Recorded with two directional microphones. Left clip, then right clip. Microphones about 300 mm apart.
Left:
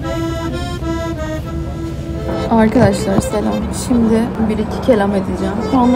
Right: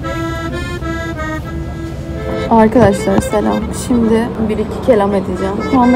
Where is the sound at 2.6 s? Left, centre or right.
Centre.